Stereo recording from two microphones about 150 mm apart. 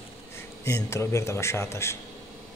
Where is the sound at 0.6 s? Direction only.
20° left (ahead or behind).